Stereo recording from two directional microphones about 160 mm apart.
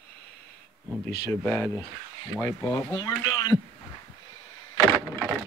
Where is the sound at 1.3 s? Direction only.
10° left (ahead or behind).